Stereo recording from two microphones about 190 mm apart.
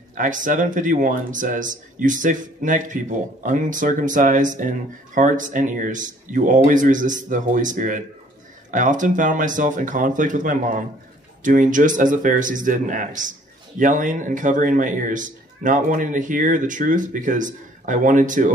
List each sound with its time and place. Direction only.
0.1 s speech: 45° right (ahead or behind)